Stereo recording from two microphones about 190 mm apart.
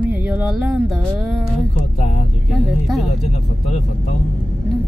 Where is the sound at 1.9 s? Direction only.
35° left (ahead or behind).